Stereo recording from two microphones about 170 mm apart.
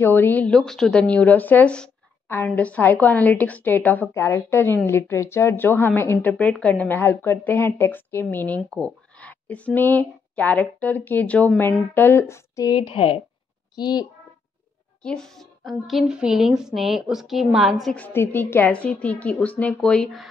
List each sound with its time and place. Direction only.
0.0 s a woman's voice: 10° left (ahead or behind)
15.0 s a woman's voice: 5° left (ahead or behind)